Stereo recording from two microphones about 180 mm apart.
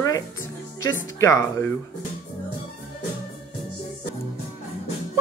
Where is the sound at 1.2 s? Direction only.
15° left (ahead or behind).